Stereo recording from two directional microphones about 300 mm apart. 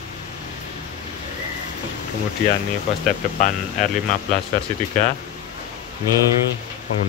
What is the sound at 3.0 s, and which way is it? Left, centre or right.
Speech, left.